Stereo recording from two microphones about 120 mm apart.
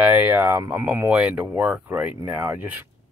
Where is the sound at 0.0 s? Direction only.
15° right (ahead or behind).